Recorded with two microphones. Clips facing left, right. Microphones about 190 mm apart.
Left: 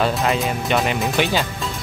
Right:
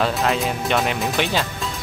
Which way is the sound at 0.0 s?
5° left (ahead or behind).